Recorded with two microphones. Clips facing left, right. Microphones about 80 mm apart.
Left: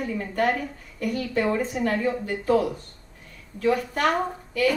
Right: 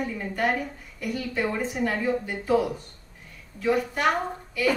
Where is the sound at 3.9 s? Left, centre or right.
Left.